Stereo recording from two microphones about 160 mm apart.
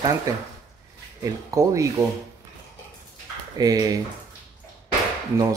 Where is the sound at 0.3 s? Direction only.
20° right (ahead or behind).